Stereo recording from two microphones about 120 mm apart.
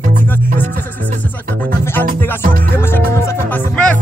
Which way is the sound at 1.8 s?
20° left (ahead or behind).